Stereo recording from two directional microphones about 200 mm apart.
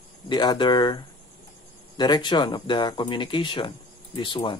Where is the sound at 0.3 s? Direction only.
20° left (ahead or behind).